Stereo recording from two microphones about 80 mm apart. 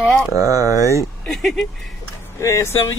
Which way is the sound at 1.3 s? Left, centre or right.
Centre.